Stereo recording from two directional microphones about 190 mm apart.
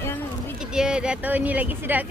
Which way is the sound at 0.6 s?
5° right (ahead or behind).